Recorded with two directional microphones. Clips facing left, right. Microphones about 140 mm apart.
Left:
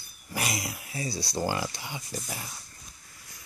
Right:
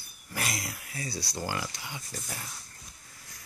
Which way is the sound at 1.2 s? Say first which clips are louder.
Left 9 dB; 35° left (ahead or behind).